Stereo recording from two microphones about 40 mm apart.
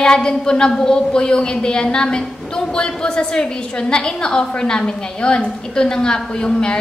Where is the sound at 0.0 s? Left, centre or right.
Centre.